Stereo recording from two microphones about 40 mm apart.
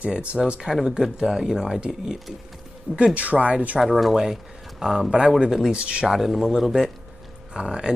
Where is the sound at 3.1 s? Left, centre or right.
Right.